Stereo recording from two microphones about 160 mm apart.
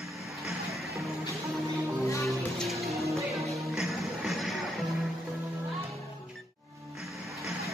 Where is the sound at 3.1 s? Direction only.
20° right (ahead or behind).